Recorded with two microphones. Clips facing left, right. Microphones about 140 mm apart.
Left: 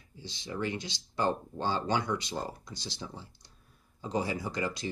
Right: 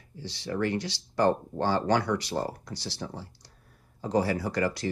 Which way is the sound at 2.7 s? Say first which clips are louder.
Right 5 dB; 15° left (ahead or behind).